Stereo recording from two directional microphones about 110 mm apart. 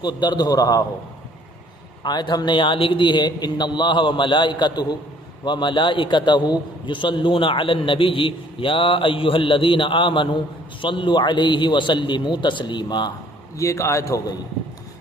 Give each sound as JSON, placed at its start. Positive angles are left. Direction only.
{"t": 0.0, "sound": "a man's voice", "side_deg": 40}
{"t": 2.0, "sound": "a man's voice", "side_deg": 40}
{"t": 13.6, "sound": "a man's voice", "side_deg": 30}